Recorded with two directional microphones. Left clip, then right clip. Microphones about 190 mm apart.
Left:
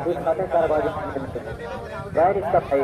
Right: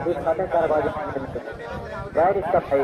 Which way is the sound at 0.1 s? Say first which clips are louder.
Left 1 dB; 40° left (ahead or behind).